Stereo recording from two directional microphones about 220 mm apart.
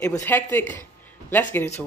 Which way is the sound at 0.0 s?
10° left (ahead or behind).